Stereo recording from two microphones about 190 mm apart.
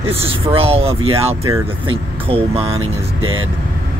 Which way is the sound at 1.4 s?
15° right (ahead or behind).